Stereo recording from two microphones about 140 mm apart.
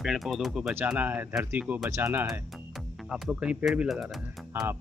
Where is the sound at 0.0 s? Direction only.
Centre (ahead or behind); by 2.3 s 20° right (ahead or behind).